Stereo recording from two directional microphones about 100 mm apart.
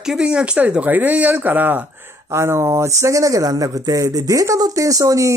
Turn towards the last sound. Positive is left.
turn(degrees=-35)  # may be behind; listen again after turning